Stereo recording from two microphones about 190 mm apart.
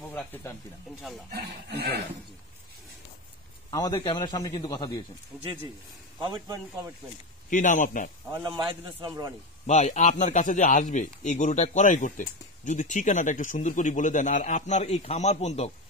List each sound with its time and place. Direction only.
0.1 s speech: 10° left (ahead or behind)
1.3 s speech: 60° right (ahead or behind)
3.7 s a man's voice: 20° left (ahead or behind)
6.2 s a man's voice: 20° right (ahead or behind)
7.4 s a man's voice: 45° left (ahead or behind)
8.3 s a man's voice: 25° right (ahead or behind)
9.7 s speech: 35° left (ahead or behind)